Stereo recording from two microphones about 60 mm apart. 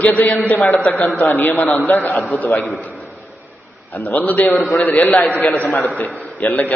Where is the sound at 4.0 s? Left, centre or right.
Left.